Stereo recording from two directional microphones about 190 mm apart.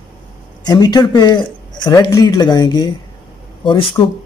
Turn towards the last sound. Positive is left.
turn(degrees=25)  # may be behind; listen again after turning